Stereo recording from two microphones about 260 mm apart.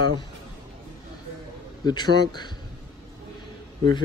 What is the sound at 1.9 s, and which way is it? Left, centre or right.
Speech, centre.